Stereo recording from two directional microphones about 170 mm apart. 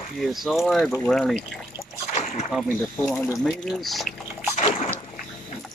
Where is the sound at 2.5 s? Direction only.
Centre (ahead or behind).